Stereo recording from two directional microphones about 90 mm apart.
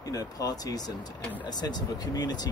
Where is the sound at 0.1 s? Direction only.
40° left (ahead or behind).